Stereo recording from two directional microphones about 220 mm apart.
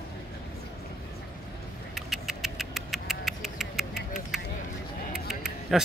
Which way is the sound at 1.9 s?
Centre (ahead or behind).